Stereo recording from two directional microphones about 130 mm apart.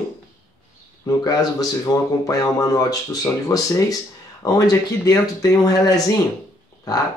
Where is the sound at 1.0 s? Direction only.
25° left (ahead or behind).